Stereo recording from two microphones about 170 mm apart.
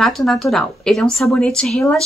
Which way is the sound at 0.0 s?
Centre (ahead or behind).